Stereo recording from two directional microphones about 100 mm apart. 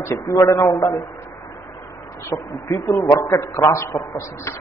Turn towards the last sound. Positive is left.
turn(degrees=30)  # may be behind; listen again after turning